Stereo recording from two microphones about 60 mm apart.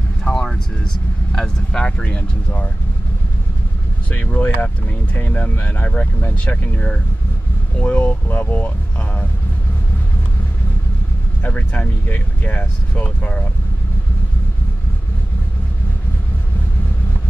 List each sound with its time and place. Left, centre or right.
0.2 s vehicle: centre
1.3 s speech: centre
4.1 s speech: left
11.4 s speech: left